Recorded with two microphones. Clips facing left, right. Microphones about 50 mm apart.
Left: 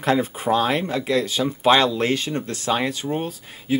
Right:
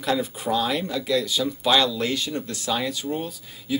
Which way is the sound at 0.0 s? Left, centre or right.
Left.